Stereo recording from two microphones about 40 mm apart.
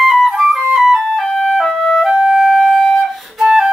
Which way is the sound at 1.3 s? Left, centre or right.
Centre.